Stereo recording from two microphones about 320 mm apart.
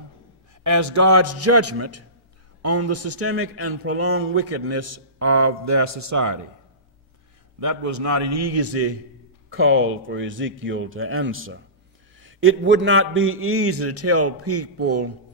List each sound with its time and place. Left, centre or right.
0.7 s speech: right
7.6 s a man's voice: right